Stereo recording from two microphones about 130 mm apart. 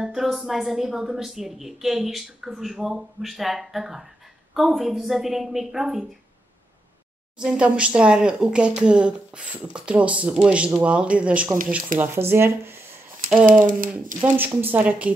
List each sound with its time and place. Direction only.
0.0 s a woman's voice: 5° right (ahead or behind)
7.3 s speech: 5° right (ahead or behind)
13.5 s speech: 90° right
14.2 s speech: 15° right (ahead or behind)